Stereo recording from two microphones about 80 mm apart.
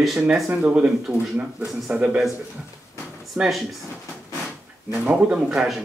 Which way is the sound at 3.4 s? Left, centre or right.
Centre.